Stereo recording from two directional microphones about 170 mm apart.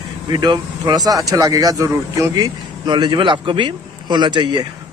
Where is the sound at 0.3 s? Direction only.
25° right (ahead or behind).